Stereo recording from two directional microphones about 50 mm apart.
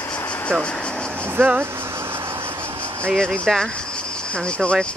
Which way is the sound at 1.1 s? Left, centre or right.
Right.